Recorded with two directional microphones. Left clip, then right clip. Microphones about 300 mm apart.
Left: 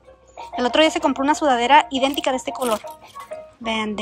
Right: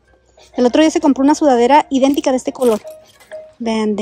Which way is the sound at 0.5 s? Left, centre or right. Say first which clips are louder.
Right 5 dB; right.